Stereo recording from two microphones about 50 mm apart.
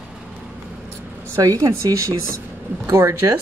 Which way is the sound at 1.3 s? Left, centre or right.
Right.